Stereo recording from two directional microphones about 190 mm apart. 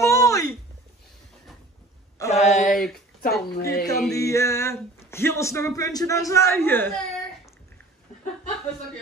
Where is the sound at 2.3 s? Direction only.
35° left (ahead or behind).